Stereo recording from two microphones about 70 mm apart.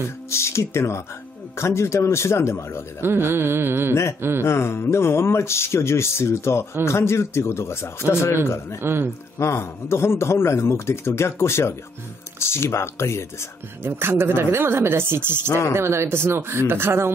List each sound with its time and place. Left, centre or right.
0.3 s a man's voice: left
3.0 s speech: right
4.4 s a man's voice: left
8.8 s speech: right
9.4 s a man's voice: left
13.8 s speech: right